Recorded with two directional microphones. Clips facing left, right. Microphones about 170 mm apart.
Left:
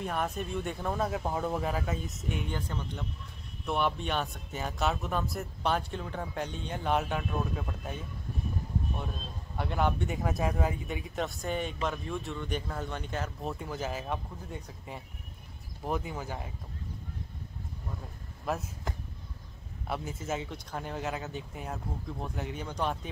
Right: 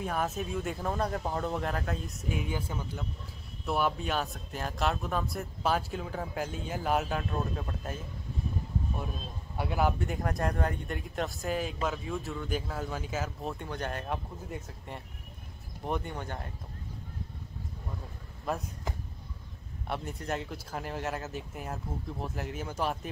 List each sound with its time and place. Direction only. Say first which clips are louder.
0.0 s speech: right 1 dB; centre (ahead or behind)
9.6 s speech: right 1 dB; 5° right (ahead or behind)
18.4 s a sound: even; centre (ahead or behind)
19.9 s speech: even; centre (ahead or behind)